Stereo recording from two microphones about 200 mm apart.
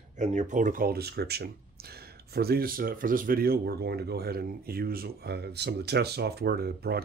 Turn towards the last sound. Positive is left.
turn(degrees=-50)  # may be behind; listen again after turning